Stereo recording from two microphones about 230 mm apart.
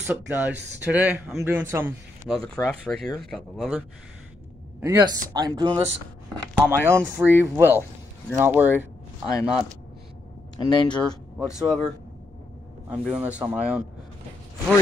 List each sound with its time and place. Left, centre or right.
0.0 s speech: centre
2.2 s speech: centre
4.7 s speech: centre
6.5 s speech: centre
9.3 s speech: centre
11.1 s speech: centre
13.1 s speech: centre